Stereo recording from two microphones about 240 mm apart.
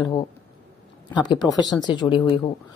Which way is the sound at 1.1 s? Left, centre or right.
Centre.